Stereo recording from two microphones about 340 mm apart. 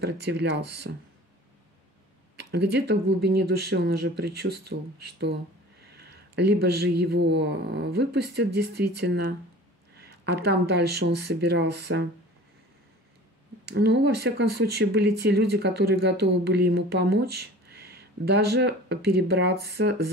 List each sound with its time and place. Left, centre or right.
0.0 s speech: right
2.3 s speech: right
6.3 s a woman's voice: right
13.7 s speech: right